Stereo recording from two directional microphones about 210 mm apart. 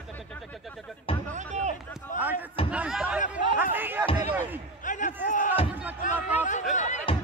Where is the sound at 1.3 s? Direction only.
35° right (ahead or behind).